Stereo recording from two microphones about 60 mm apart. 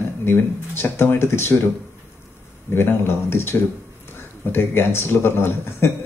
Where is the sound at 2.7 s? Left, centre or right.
Left.